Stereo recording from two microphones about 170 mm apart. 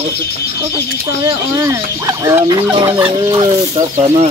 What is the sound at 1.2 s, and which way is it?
Speech, 20° right (ahead or behind).